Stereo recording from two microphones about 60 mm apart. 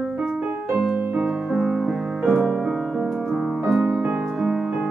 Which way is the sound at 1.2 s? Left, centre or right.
Centre.